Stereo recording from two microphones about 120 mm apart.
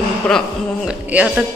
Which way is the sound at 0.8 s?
10° right (ahead or behind).